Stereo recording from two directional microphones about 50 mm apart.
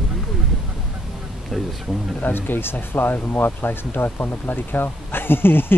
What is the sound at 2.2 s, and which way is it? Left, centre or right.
Speech, left.